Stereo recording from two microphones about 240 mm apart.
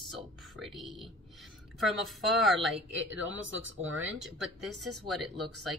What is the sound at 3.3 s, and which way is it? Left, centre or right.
Speech, right.